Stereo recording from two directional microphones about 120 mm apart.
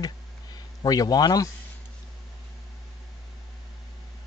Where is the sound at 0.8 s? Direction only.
30° left (ahead or behind).